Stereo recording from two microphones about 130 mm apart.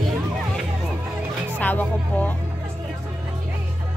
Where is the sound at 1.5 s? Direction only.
10° left (ahead or behind).